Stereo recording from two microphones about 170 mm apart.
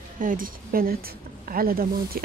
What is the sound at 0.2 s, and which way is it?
A woman's voice, 55° right (ahead or behind).